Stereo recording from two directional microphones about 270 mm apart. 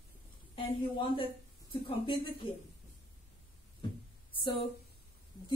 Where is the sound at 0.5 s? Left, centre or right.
Centre.